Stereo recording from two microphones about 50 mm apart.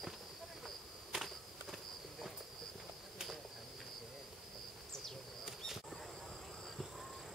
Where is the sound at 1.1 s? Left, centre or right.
Centre.